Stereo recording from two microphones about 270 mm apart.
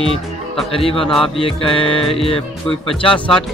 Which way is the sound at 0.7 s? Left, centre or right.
Left.